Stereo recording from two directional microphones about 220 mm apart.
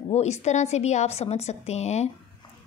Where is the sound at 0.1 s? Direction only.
30° left (ahead or behind).